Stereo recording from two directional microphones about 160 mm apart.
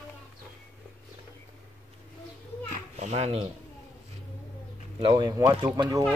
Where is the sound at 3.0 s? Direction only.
45° right (ahead or behind).